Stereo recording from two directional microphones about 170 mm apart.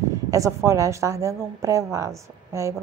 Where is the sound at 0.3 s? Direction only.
20° right (ahead or behind).